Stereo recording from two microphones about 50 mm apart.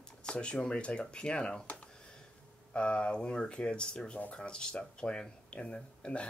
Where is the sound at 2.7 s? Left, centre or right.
Left.